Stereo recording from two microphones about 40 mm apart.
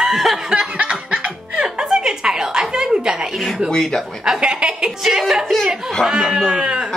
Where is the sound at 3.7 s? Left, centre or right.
Centre.